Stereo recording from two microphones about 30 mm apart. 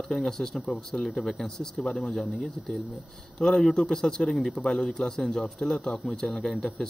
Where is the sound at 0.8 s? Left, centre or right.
Centre.